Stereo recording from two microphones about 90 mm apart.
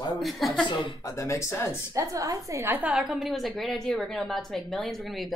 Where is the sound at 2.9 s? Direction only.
5° right (ahead or behind).